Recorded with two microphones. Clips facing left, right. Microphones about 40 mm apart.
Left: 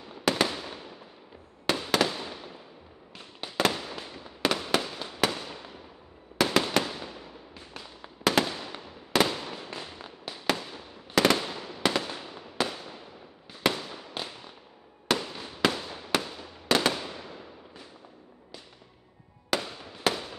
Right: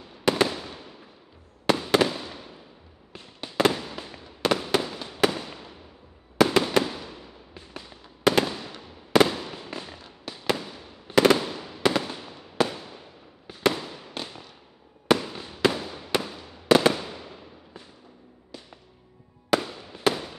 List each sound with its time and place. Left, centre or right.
0.2 s fireworks: centre
1.7 s fireworks: centre
3.5 s fireworks: centre
10.5 s fireworks: centre
19.5 s fireworks: centre